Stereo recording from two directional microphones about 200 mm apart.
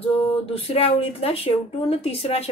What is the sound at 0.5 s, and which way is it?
A woman's voice, 30° left (ahead or behind).